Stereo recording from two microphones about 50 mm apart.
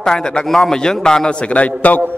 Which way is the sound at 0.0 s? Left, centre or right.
Centre.